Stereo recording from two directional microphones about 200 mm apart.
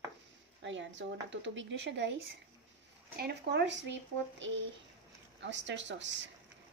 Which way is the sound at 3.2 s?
55° right (ahead or behind).